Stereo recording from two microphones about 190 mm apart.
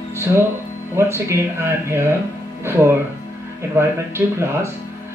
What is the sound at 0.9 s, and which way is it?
Speech, 15° right (ahead or behind).